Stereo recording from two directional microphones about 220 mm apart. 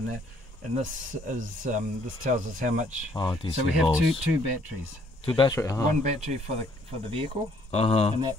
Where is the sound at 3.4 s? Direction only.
25° left (ahead or behind).